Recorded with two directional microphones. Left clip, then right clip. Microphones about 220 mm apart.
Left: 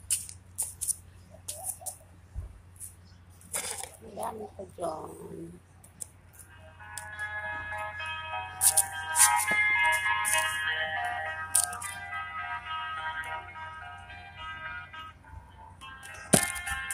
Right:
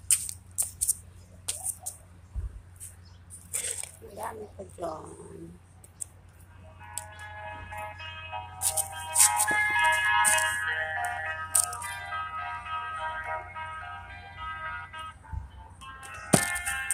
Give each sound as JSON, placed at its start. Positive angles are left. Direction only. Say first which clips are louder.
{"t": 0.1, "sound": "a sound", "louder": "right 6 dB", "side_deg": -40}
{"t": 3.8, "sound": "coin", "louder": "left 1 dB", "side_deg": -10}
{"t": 7.1, "sound": "music", "louder": "left 8 dB", "side_deg": 20}
{"t": 9.5, "sound": "music", "louder": "right 1 dB", "side_deg": -15}